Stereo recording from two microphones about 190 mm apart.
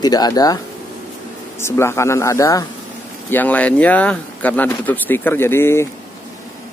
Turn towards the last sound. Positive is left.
turn(degrees=10)  # may be behind; listen again after turning